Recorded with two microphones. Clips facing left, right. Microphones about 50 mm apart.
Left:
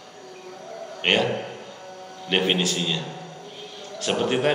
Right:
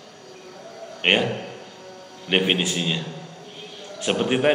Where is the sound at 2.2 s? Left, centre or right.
Centre.